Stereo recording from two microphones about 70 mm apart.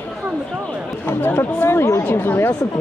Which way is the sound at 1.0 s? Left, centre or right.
Left.